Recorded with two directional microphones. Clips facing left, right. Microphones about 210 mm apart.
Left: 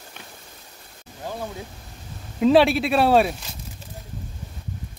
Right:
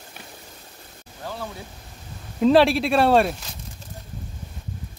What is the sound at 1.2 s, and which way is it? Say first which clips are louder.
Speech: left 2 dB; 15° left (ahead or behind).